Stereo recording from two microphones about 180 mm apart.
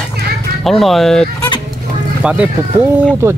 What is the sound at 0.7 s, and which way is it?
Speech, centre (ahead or behind).